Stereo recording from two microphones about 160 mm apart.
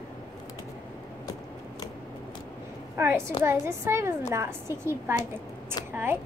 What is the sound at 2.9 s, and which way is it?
A woman's voice, 15° right (ahead or behind).